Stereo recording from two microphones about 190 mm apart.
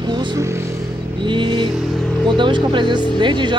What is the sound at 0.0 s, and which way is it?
Vehicle, 25° right (ahead or behind).